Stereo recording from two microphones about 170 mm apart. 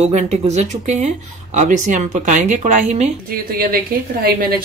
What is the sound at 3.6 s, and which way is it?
Speech, 60° right (ahead or behind).